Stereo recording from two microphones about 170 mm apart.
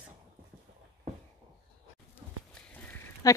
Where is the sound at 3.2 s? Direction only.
20° left (ahead or behind).